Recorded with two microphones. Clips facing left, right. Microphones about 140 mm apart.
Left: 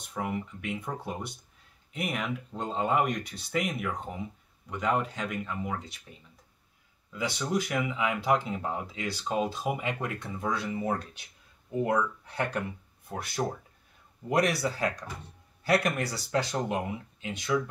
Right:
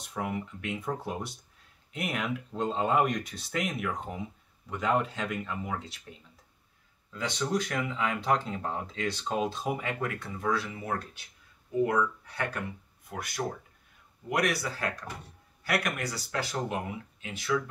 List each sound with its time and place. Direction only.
0.0 s speech: centre (ahead or behind)
9.8 s speech: 15° left (ahead or behind)